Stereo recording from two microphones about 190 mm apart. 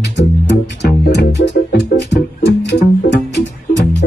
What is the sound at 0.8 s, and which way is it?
Music, 65° left (ahead or behind).